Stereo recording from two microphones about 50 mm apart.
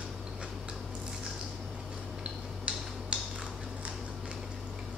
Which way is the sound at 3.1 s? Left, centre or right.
Right.